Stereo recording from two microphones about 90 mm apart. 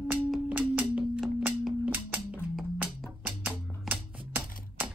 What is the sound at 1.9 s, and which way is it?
Music, 20° right (ahead or behind).